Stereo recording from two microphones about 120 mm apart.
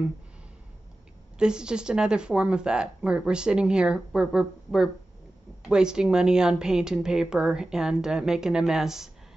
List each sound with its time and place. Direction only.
1.4 s a woman's voice: 5° right (ahead or behind)